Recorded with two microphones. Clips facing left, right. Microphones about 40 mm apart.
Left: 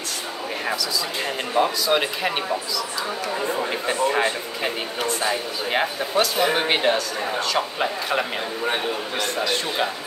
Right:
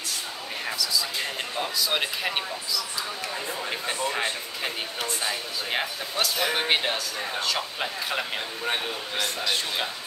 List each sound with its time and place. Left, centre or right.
1.8 s speech: centre
3.9 s speech: left
5.7 s speech: centre
6.7 s speech: centre